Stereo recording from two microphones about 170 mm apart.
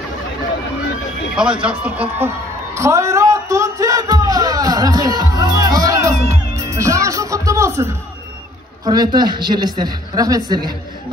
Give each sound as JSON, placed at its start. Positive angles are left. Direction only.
{"t": 1.3, "sound": "a sound", "side_deg": -5}
{"t": 6.5, "sound": "cat", "side_deg": -20}
{"t": 8.8, "sound": "a woman's voice", "side_deg": -25}